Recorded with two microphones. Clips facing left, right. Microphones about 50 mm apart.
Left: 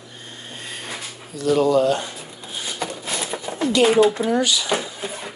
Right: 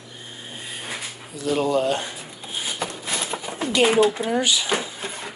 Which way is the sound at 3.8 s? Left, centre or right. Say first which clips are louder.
Left 2 dB; centre.